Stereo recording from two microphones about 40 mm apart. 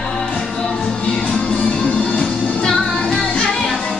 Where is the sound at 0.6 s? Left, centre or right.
Left.